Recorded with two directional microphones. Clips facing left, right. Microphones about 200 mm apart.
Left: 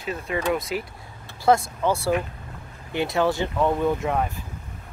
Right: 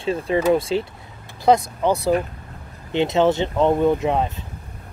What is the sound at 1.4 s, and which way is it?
Speech, 20° right (ahead or behind).